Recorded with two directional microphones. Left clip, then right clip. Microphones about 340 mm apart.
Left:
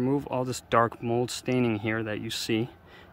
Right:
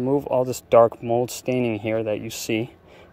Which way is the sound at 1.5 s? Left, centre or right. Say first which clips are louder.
Right 3 dB; centre.